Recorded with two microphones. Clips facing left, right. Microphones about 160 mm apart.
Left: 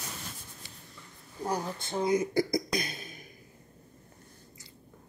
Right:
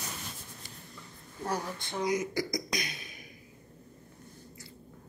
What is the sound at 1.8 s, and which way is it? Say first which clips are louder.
Speech: left 4 dB; 25° left (ahead or behind).